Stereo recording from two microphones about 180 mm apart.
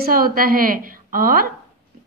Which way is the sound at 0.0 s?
50° right (ahead or behind).